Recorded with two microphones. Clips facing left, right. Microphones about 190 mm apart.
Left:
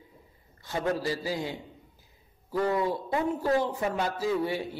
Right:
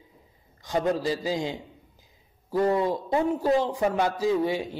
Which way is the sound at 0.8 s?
15° right (ahead or behind).